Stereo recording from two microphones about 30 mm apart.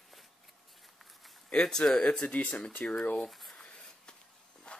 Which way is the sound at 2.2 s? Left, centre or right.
Left.